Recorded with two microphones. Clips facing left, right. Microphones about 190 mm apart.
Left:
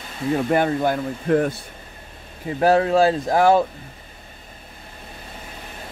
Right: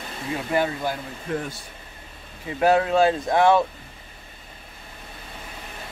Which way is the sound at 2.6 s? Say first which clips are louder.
Left 2 dB; 35° left (ahead or behind).